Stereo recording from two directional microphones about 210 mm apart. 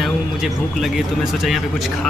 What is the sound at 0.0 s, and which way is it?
Speech, centre (ahead or behind).